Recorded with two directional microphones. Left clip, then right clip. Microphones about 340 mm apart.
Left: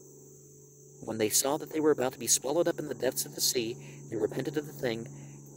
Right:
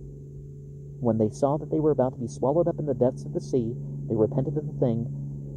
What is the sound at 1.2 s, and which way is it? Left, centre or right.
Speech, left.